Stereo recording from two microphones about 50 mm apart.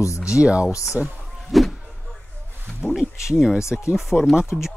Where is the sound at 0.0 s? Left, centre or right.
Left.